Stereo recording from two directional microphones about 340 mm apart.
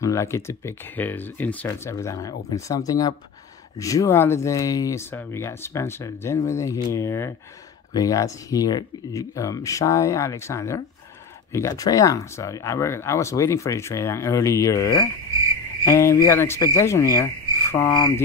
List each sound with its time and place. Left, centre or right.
0.0 s speech: centre